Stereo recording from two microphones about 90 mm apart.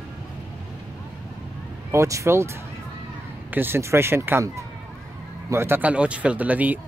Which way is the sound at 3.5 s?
25° right (ahead or behind).